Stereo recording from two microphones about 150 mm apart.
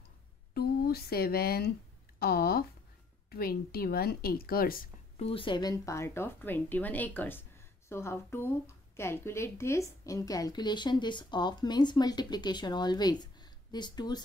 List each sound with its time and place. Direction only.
0.6 s speech: 90° left
5.1 s a woman's voice: 40° left (ahead or behind)